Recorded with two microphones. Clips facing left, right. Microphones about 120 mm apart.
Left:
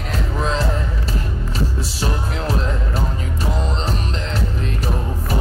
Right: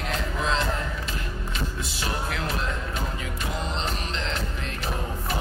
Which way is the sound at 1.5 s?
35° left (ahead or behind).